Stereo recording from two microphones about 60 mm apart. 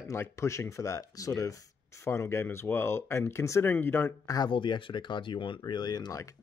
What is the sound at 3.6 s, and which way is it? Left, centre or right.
Speech, left.